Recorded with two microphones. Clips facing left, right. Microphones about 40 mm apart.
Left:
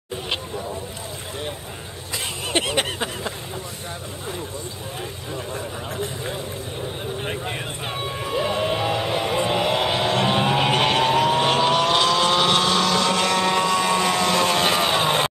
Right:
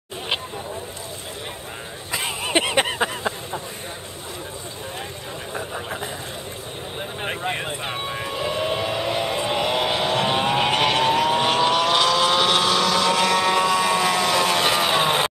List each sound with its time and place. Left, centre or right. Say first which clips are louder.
2.1 s vehicle: right 2 dB; centre
5.5 s vehicle: right 1 dB; centre
7.2 s vehicle: right 2 dB; centre
8.3 s a sound: left 3 dB; centre